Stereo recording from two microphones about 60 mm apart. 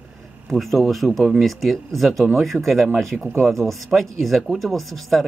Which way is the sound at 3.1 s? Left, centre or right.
Centre.